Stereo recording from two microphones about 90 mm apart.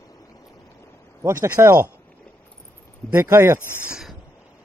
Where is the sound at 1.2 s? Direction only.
30° right (ahead or behind).